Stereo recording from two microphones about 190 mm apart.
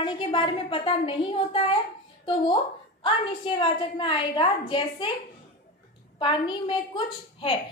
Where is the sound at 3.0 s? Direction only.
25° left (ahead or behind).